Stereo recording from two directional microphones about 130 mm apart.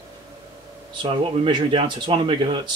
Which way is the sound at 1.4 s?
40° right (ahead or behind).